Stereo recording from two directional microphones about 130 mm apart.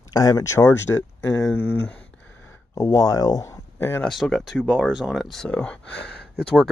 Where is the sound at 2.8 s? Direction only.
25° left (ahead or behind).